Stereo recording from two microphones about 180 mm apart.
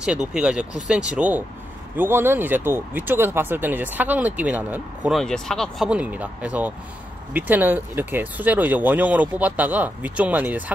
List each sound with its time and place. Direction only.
0.3 s speech: 5° right (ahead or behind)